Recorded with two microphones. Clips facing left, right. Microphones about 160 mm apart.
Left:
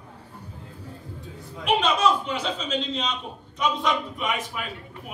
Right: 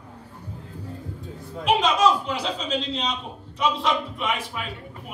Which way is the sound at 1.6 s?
40° right (ahead or behind).